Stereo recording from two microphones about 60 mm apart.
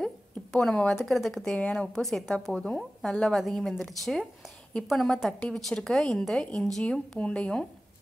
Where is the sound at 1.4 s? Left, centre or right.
Left.